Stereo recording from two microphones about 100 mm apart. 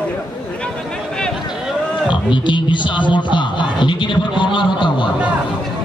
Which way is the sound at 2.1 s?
55° left (ahead or behind).